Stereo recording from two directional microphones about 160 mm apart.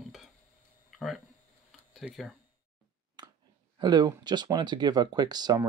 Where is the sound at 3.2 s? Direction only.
25° right (ahead or behind).